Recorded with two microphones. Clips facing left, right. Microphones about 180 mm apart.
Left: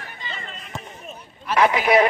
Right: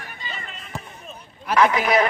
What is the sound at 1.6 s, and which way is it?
Speech, 25° left (ahead or behind).